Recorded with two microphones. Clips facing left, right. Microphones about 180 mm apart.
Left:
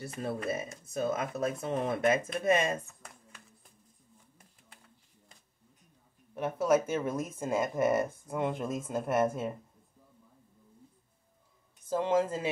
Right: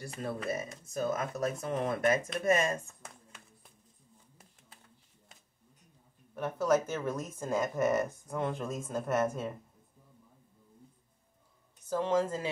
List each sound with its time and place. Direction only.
0.0 s speech: 25° left (ahead or behind)
6.3 s speech: 10° left (ahead or behind)
11.9 s speech: 15° left (ahead or behind)